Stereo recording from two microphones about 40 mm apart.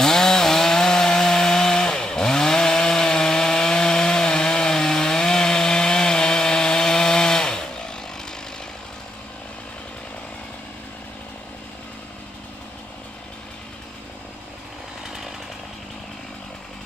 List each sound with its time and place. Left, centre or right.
0.0 s chainsaw: centre